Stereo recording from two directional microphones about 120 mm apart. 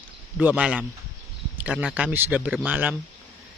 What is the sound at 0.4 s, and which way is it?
Speech, 10° right (ahead or behind).